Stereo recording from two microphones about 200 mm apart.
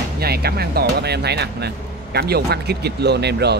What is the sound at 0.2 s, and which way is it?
Speech, 50° right (ahead or behind).